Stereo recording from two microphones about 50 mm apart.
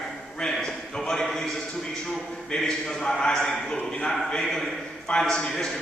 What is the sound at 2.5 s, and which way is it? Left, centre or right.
A man's voice, centre.